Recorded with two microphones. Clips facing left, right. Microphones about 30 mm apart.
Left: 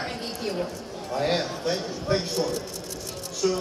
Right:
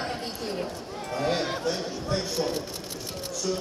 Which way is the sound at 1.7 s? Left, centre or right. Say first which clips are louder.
Left 3 dB; left.